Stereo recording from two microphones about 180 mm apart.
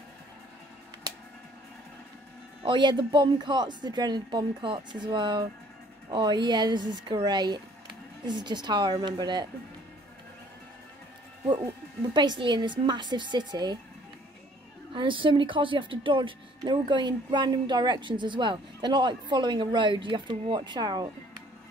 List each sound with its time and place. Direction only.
2.6 s speech: 25° right (ahead or behind)
12.1 s speech: 25° right (ahead or behind)
15.0 s speech: 30° right (ahead or behind)